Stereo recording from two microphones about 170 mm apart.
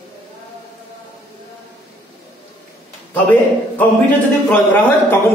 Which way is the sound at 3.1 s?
10° left (ahead or behind).